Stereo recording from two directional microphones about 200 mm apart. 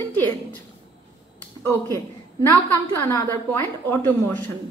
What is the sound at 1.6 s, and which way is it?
Speech, 15° left (ahead or behind).